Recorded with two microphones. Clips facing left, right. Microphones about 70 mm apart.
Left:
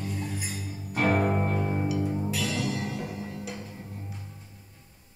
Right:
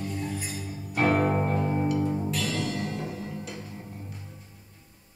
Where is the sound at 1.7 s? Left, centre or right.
Centre.